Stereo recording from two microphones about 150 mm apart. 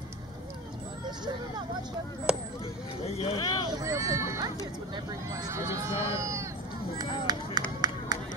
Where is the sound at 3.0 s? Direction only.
40° left (ahead or behind).